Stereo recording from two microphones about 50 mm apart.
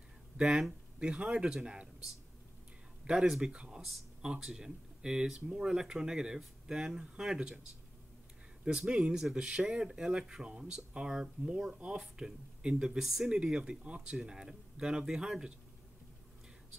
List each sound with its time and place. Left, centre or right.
0.4 s speech: centre
3.1 s speech: centre
3.5 s speech: centre
8.6 s speech: centre
13.5 s speech: centre